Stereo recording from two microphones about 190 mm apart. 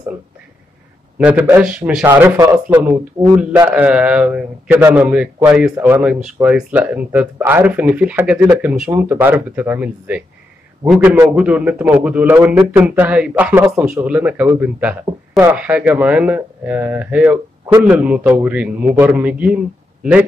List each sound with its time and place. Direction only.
1.1 s a man's voice: 10° right (ahead or behind)
2.0 s speech: 15° right (ahead or behind)